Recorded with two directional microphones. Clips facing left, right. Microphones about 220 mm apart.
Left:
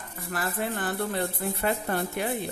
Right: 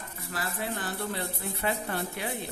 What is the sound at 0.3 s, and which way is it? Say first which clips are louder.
A woman's voice: left 4 dB; 55° left (ahead or behind).